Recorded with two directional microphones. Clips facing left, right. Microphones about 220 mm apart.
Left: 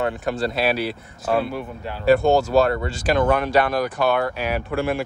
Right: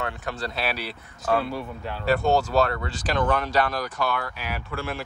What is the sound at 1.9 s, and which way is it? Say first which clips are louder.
Speech: left 6 dB; 10° left (ahead or behind).